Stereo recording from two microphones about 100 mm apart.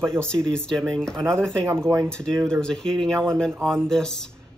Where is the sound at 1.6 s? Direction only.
25° right (ahead or behind).